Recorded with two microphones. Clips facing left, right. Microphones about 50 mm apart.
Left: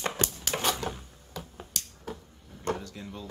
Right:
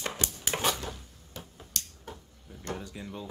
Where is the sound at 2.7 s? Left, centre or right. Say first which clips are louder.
Even; centre.